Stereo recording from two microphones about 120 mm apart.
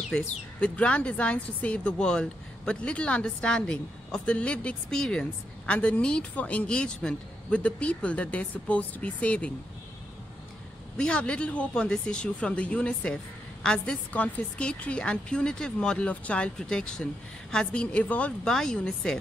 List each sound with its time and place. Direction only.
0.1 s speech: 5° left (ahead or behind)
11.0 s speech: 10° left (ahead or behind)